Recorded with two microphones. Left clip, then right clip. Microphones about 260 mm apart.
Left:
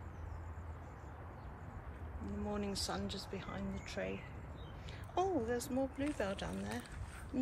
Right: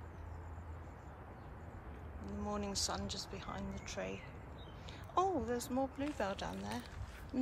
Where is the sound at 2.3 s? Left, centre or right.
Centre.